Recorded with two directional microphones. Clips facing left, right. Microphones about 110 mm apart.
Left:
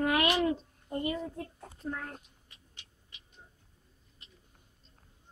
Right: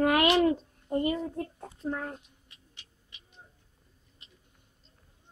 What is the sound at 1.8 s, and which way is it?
Speech, 25° right (ahead or behind).